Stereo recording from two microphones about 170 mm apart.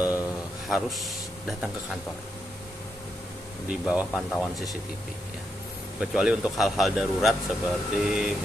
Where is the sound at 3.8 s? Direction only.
5° right (ahead or behind).